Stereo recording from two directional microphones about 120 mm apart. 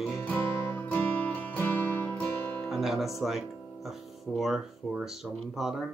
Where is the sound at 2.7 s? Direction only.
Centre (ahead or behind).